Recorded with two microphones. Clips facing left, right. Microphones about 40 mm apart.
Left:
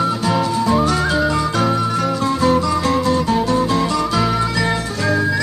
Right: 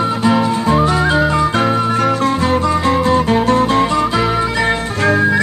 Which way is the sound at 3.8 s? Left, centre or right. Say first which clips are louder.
Right 3 dB; right.